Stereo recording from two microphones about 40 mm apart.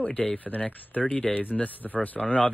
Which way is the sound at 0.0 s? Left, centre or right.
Left.